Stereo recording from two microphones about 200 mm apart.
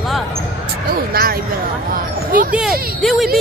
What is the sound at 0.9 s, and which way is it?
Speech, 50° right (ahead or behind).